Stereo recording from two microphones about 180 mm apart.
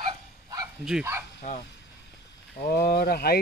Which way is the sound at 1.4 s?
35° left (ahead or behind).